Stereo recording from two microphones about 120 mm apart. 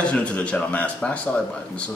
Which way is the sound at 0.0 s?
10° left (ahead or behind).